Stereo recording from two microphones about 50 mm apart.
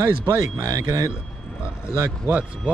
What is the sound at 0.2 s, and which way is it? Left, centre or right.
Speech, right.